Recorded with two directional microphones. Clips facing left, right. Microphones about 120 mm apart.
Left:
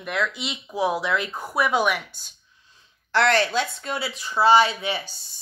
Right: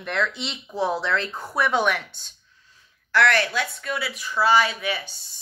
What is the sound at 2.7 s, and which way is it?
Speech, 25° left (ahead or behind).